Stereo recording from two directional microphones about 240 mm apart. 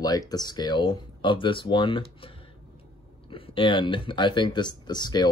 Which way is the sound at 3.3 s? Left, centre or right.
Left.